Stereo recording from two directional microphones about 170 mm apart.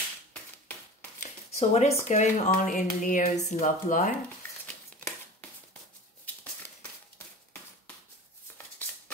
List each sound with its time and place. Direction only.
1.2 s a sound: 40° left (ahead or behind)
2.0 s speech: 45° left (ahead or behind)
8.8 s music: 10° left (ahead or behind)